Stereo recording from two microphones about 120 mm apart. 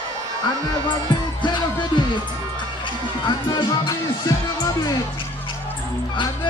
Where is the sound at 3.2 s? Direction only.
35° left (ahead or behind).